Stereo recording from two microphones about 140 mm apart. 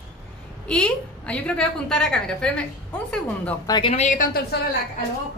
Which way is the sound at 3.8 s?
55° left (ahead or behind).